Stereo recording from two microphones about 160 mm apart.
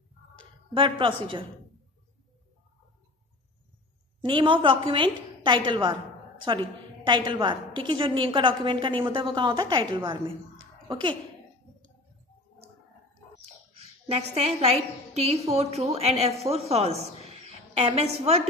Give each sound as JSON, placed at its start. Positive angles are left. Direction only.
{"t": 0.7, "sound": "a woman's voice", "side_deg": -30}
{"t": 4.2, "sound": "a woman's voice", "side_deg": -30}
{"t": 13.7, "sound": "a woman's voice", "side_deg": -40}